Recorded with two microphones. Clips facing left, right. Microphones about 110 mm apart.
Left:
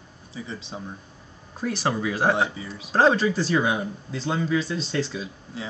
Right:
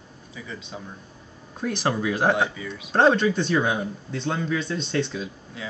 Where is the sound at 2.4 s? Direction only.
30° left (ahead or behind).